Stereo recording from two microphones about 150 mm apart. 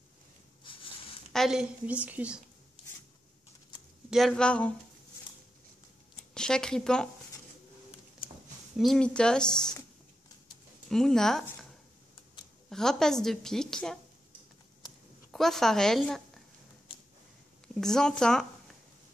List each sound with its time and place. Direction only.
1.3 s a woman's voice: centre (ahead or behind)
4.1 s speech: centre (ahead or behind)
6.3 s speech: 5° left (ahead or behind)
8.7 s a woman's voice: centre (ahead or behind)
10.9 s a woman's voice: 5° left (ahead or behind)
12.6 s a woman's voice: 5° left (ahead or behind)
15.3 s a woman's voice: centre (ahead or behind)
16.9 s a sound: 35° left (ahead or behind)
17.7 s a woman's voice: 5° left (ahead or behind)